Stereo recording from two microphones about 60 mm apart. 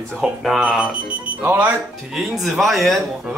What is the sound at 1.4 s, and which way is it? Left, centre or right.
Speech, right.